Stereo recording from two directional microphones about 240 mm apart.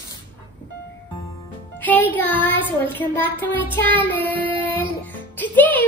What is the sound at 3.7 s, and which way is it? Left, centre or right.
Child singing, centre.